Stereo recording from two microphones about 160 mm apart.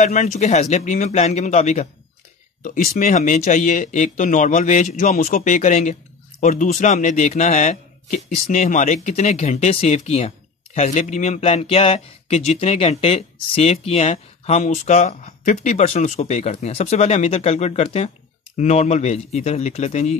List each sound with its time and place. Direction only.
0.0 s speech: 50° left (ahead or behind)
2.6 s speech: 55° left (ahead or behind)